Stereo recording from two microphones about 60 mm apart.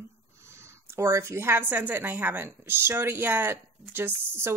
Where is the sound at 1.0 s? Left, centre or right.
Right.